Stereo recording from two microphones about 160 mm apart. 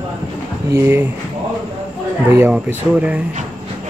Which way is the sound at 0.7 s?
15° right (ahead or behind).